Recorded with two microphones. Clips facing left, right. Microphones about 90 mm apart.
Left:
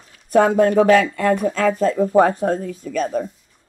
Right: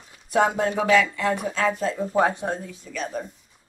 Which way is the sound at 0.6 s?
50° left (ahead or behind).